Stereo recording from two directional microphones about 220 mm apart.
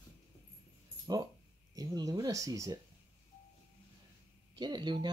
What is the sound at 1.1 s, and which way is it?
Speech, 15° right (ahead or behind).